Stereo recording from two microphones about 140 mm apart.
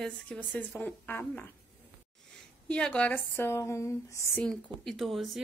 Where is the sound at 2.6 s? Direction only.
5° left (ahead or behind).